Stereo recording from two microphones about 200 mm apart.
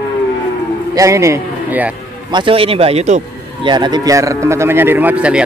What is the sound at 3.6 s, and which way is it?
Speech, 20° right (ahead or behind).